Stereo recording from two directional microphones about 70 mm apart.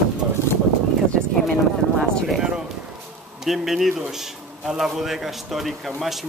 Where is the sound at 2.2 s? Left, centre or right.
Centre.